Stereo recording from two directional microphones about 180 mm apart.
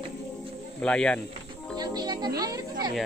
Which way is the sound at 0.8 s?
5° left (ahead or behind).